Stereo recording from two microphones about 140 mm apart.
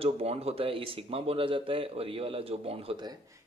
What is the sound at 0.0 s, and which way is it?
Speech, 45° right (ahead or behind).